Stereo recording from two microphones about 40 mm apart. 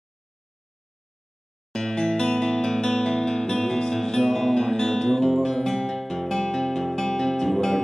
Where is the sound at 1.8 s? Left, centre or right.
Centre.